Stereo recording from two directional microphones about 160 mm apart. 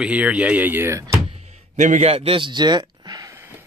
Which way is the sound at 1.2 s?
45° right (ahead or behind).